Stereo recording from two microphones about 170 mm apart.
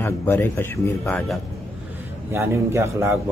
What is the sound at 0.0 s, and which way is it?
A man's voice, 10° left (ahead or behind).